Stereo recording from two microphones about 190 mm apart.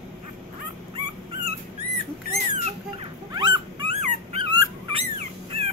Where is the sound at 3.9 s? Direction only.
35° right (ahead or behind).